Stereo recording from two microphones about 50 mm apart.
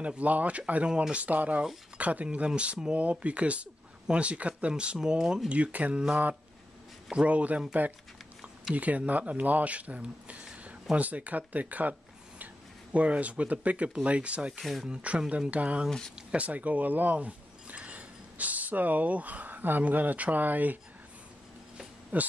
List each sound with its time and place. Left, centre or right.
0.0 s speech: right
4.9 s speech: centre
5.5 s speech: right
7.2 s speech: right
8.7 s speech: right
12.9 s speech: right
14.6 s speech: centre
14.9 s speech: right
22.1 s speech: right